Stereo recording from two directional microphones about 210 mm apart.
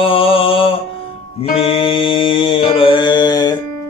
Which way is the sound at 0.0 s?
25° left (ahead or behind).